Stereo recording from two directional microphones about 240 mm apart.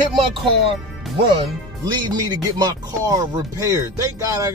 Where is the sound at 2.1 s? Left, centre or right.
Centre.